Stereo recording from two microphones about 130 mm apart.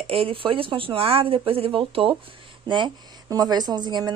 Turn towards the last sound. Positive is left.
turn(degrees=-35)  # may be behind; listen again after turning